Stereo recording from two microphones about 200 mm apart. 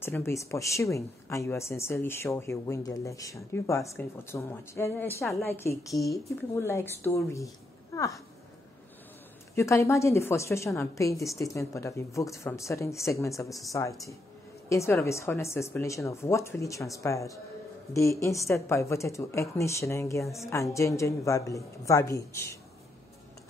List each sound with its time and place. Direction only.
0.0 s speech: 10° left (ahead or behind)
9.6 s speech: 15° left (ahead or behind)